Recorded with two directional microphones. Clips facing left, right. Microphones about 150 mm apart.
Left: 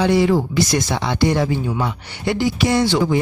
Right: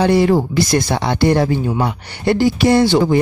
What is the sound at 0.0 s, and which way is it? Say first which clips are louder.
Speech: right 3 dB; 55° right (ahead or behind).